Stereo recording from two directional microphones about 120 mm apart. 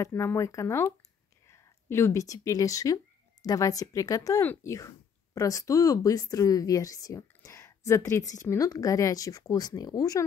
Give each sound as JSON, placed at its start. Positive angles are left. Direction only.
{"t": 0.0, "sound": "speech", "side_deg": 20}